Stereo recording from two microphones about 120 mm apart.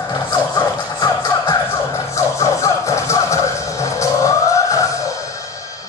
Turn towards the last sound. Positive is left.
turn(degrees=25)  # may be behind; listen again after turning